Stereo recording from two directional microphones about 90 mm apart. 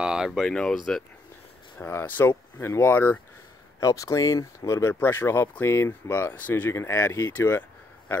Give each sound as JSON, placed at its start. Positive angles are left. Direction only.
{"t": 0.0, "sound": "speech", "side_deg": -5}
{"t": 0.5, "sound": "speech", "side_deg": 10}
{"t": 1.8, "sound": "speech", "side_deg": 20}
{"t": 3.8, "sound": "speech", "side_deg": 40}
{"t": 5.0, "sound": "speech", "side_deg": 25}